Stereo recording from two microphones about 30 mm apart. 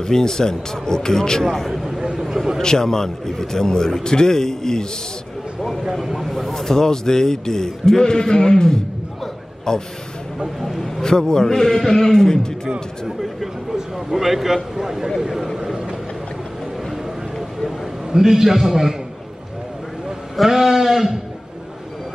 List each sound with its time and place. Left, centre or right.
0.0 s a man's voice: centre
2.1 s a sound: centre
2.6 s a man's voice: left
5.9 s speech: centre
6.2 s a sound: centre
6.5 s a man's voice: centre
10.6 s speech: centre
11.0 s a man's voice: left
13.0 s a man's voice: centre
17.6 s a man's voice: centre
20.3 s a man's voice: centre